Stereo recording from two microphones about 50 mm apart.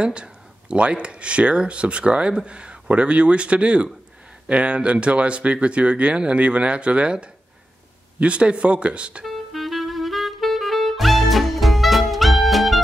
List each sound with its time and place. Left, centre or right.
0.0 s speech: right
9.2 s music: centre